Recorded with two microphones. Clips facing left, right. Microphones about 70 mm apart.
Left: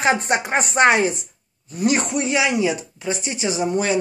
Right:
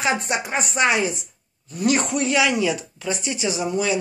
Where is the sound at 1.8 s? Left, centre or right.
Left.